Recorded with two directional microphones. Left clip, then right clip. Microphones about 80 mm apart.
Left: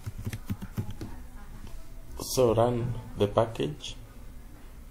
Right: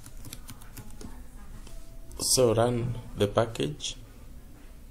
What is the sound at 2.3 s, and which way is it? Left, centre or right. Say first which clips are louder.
Speech: even; right.